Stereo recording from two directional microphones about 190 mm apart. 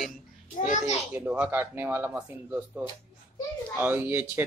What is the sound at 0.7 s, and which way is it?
Speech, 40° left (ahead or behind).